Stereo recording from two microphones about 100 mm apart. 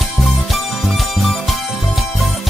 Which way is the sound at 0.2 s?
Centre (ahead or behind).